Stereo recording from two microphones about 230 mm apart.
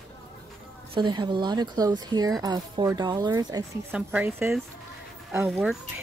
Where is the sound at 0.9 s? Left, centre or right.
Centre.